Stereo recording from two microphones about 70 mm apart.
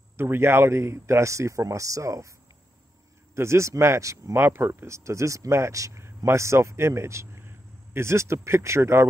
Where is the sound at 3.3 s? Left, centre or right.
Right.